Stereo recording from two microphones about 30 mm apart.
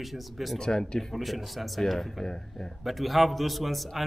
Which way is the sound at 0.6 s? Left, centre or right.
Left.